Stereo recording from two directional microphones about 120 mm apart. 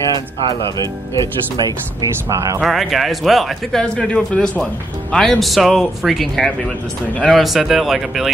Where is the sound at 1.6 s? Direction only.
35° right (ahead or behind).